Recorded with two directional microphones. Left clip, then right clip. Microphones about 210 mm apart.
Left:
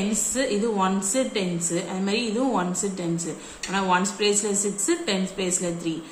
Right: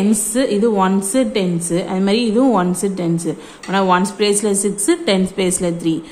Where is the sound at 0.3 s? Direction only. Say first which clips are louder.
Right 8 dB; 40° right (ahead or behind).